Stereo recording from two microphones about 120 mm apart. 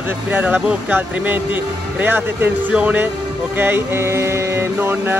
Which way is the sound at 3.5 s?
20° right (ahead or behind).